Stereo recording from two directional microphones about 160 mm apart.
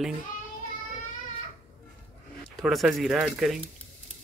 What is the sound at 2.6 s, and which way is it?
Speech, centre (ahead or behind).